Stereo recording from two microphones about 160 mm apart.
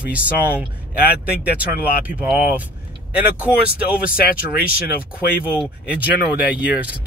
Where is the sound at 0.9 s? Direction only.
75° left (ahead or behind).